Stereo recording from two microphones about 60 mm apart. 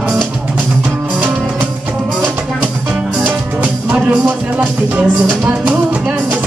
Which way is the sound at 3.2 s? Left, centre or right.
Right.